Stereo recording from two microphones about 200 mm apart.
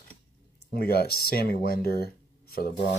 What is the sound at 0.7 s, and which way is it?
Speech, 50° left (ahead or behind).